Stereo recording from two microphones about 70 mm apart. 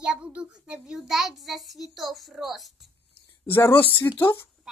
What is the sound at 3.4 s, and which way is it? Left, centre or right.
Speech, left.